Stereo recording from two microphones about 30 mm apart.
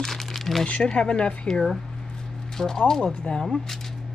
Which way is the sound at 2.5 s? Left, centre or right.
Centre.